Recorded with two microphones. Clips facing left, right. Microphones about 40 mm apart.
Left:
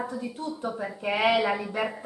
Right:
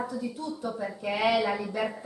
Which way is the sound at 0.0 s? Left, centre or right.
Left.